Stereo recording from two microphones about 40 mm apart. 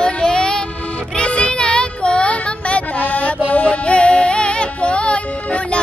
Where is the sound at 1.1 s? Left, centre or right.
Left.